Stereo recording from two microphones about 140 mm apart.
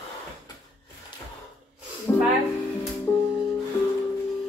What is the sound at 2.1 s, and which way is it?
Music, 15° left (ahead or behind).